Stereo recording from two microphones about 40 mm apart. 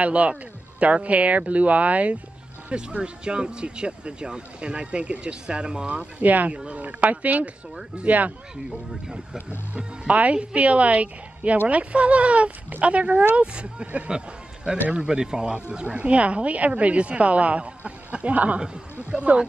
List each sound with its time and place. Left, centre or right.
0.0 s speech: right
2.7 s speech: right
8.6 s speech: centre
9.8 s speech: right